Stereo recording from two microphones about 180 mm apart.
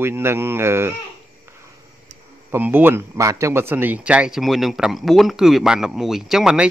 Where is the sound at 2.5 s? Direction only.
10° right (ahead or behind).